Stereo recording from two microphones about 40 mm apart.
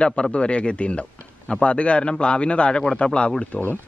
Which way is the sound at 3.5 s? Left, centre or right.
Left.